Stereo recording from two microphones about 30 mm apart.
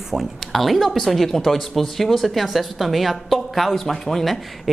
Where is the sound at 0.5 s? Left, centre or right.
Centre.